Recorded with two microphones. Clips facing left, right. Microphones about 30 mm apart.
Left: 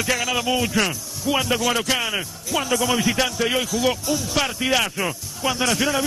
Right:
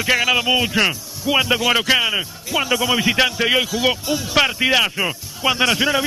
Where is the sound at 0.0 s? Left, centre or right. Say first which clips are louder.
Right 5 dB; right.